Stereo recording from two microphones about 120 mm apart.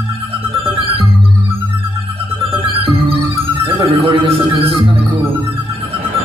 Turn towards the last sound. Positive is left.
turn(degrees=-50)  # may be behind; listen again after turning